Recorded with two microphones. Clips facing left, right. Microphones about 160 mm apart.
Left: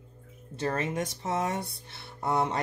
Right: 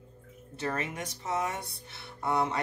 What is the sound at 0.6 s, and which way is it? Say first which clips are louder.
Speech: left 4 dB; 35° left (ahead or behind).